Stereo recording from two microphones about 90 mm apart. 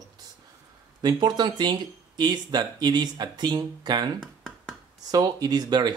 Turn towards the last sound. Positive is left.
turn(degrees=-50)  # may be behind; listen again after turning